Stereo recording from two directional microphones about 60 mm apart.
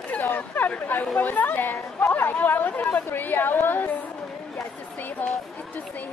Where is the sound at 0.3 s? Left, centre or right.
Left.